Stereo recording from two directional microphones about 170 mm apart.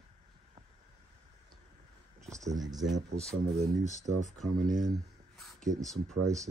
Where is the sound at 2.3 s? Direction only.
20° right (ahead or behind).